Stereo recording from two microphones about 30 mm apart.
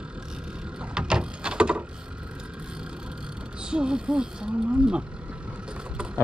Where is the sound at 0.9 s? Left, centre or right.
Right.